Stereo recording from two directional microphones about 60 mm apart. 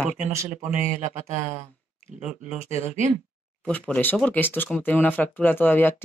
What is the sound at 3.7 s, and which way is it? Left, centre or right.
Speech, left.